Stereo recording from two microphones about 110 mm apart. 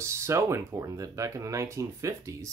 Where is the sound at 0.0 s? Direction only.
25° right (ahead or behind).